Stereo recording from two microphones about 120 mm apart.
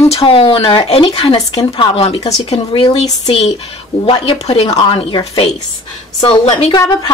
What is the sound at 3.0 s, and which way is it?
Speech, 60° left (ahead or behind).